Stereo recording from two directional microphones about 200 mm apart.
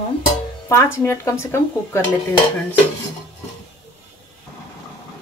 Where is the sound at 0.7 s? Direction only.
15° left (ahead or behind).